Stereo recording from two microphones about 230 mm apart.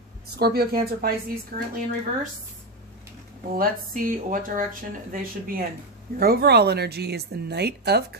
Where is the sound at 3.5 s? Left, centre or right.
Right.